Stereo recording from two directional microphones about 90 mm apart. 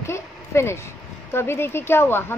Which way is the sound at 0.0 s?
30° left (ahead or behind).